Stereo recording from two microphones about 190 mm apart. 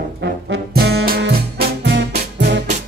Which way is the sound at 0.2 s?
65° right (ahead or behind).